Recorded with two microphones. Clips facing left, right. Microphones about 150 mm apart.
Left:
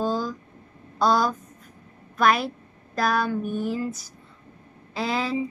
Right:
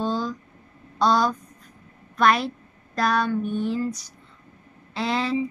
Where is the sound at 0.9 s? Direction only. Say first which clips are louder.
Right 1 dB; 5° left (ahead or behind).